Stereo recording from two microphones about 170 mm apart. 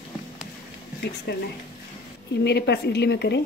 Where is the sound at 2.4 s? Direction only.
75° left (ahead or behind).